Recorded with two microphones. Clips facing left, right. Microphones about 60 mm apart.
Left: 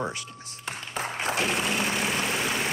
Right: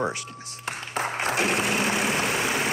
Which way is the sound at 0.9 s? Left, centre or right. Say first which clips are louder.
Right 3 dB; right.